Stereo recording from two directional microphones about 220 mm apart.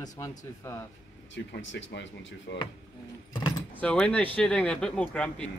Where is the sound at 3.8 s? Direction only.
5° left (ahead or behind).